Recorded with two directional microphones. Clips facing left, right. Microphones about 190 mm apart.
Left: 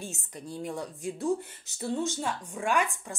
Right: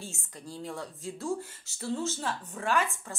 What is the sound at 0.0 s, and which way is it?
Speech, 20° left (ahead or behind).